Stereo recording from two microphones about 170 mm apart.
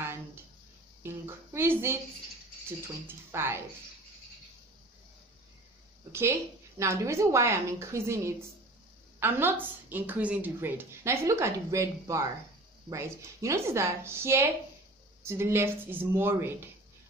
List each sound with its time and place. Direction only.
1.0 s a woman's voice: 15° right (ahead or behind)
6.8 s a woman's voice: 15° right (ahead or behind)